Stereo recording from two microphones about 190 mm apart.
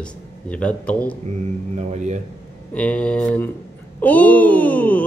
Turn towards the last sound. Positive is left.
turn(degrees=10)  # may be behind; listen again after turning